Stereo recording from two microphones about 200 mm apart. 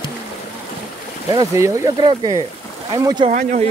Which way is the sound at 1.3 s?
15° right (ahead or behind).